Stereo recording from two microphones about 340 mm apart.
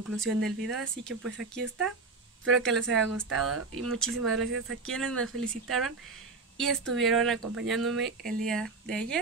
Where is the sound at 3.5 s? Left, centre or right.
Right.